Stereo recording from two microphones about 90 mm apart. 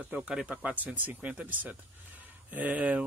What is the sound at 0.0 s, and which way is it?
Speech, 15° right (ahead or behind).